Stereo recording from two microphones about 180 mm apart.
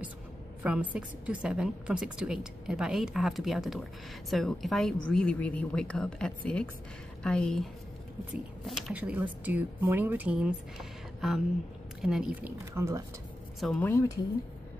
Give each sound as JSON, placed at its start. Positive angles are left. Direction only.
{"t": 0.7, "sound": "a woman's voice", "side_deg": -5}
{"t": 8.6, "sound": "speech", "side_deg": -5}
{"t": 13.6, "sound": "speech", "side_deg": 5}